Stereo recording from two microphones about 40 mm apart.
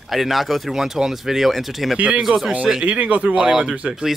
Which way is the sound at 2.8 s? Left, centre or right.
Right.